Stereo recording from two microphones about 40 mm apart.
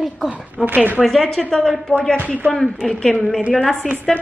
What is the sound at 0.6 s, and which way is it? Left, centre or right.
Speech, right.